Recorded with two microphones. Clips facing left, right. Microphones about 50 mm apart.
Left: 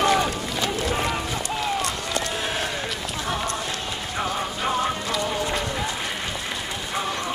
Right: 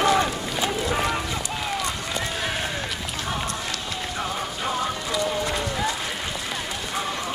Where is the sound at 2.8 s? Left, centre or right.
Centre.